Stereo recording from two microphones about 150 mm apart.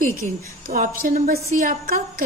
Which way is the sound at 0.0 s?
60° right (ahead or behind).